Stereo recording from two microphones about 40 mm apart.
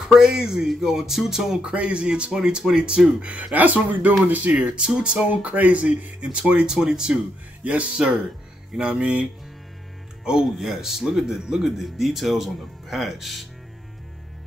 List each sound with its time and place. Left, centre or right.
0.0 s speech: centre
1.7 s speech: right
2.3 s speech: centre
3.5 s speech: right
4.6 s speech: right
5.3 s speech: right; by 7.2 s centre
7.6 s speech: right
10.4 s speech: centre